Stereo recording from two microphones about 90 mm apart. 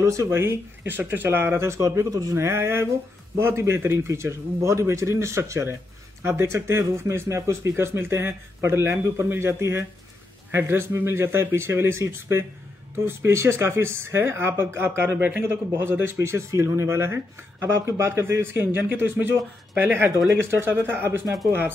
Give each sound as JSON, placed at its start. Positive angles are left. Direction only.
{"t": 0.0, "sound": "a man's voice", "side_deg": -35}